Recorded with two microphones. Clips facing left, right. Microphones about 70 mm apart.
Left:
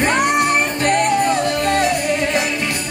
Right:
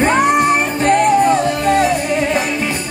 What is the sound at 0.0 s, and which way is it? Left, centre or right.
Music, centre.